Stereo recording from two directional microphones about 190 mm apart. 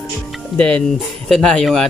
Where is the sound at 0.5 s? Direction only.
5° left (ahead or behind).